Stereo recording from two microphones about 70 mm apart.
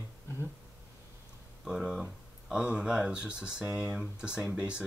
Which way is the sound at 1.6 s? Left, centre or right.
Centre.